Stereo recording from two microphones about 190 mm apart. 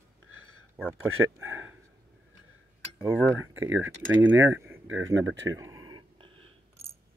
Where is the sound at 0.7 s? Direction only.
10° right (ahead or behind).